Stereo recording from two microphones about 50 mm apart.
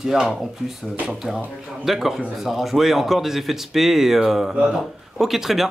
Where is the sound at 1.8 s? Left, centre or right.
Centre.